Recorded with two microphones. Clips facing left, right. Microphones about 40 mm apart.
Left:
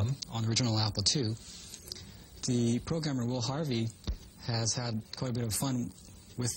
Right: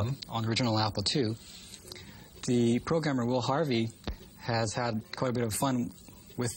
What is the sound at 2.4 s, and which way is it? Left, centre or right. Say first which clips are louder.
Speech: right 4 dB; right.